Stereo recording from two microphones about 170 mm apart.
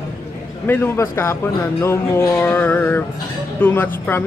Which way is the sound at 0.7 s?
15° left (ahead or behind).